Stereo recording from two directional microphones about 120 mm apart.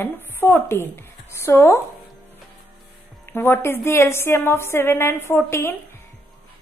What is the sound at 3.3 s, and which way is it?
A woman's voice, 20° left (ahead or behind).